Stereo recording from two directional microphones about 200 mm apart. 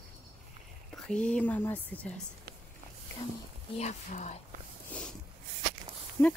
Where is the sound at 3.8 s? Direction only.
35° left (ahead or behind).